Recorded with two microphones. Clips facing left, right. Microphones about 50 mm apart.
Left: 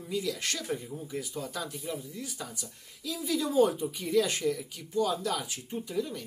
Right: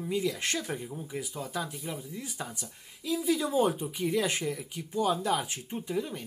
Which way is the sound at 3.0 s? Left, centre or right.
Right.